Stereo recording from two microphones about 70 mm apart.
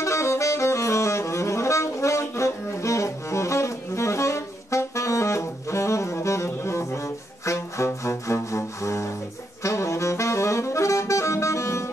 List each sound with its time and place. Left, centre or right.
0.0 s saxophone: left
7.4 s music: left
9.6 s saxophone: left